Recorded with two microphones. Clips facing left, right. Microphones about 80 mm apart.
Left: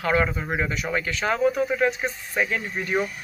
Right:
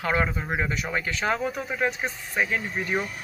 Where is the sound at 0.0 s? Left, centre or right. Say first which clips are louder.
Left 3 dB; right.